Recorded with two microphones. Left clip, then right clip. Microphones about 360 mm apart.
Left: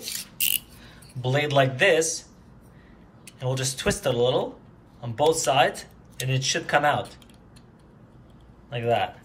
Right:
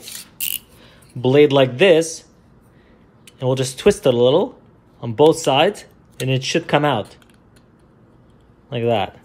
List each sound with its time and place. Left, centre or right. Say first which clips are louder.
0.5 s speech: left 1 dB; centre
3.3 s speech: right 8 dB; centre
8.6 s speech: right 5 dB; centre